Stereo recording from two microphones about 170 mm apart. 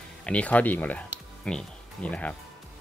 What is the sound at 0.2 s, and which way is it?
Speech, 5° left (ahead or behind).